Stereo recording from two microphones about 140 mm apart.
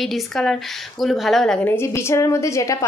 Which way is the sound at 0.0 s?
Centre (ahead or behind).